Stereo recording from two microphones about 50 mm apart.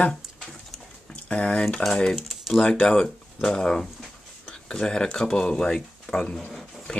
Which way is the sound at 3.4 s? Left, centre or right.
Centre.